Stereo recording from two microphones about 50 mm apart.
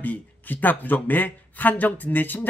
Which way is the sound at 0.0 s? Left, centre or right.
Left.